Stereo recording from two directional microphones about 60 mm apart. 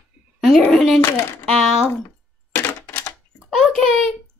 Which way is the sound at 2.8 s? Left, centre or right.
Left.